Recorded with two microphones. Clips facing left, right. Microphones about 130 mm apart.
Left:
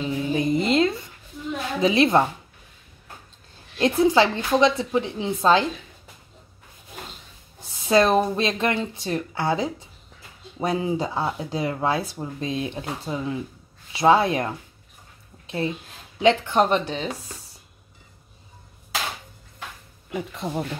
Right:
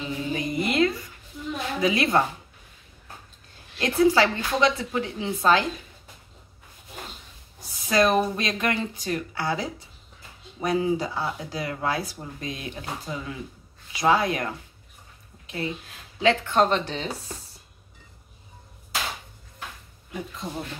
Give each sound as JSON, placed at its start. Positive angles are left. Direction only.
{"t": 0.0, "sound": "a sound", "side_deg": 25}
{"t": 1.8, "sound": "speech", "side_deg": 25}
{"t": 3.7, "sound": "speech", "side_deg": 20}
{"t": 7.6, "sound": "speech", "side_deg": 25}
{"t": 15.4, "sound": "a sound", "side_deg": 30}
{"t": 16.2, "sound": "speech", "side_deg": 15}
{"t": 20.1, "sound": "speech", "side_deg": 70}